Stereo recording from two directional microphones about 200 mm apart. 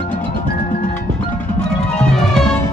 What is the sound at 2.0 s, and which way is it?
Music, 5° left (ahead or behind).